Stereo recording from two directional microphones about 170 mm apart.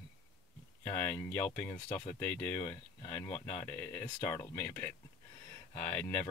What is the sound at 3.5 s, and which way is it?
Speech, 15° left (ahead or behind).